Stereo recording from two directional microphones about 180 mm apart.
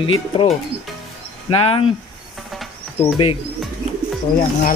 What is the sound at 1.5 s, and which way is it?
Speech, 30° left (ahead or behind).